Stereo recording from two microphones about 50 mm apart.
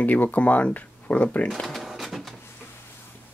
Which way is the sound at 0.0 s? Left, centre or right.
Left.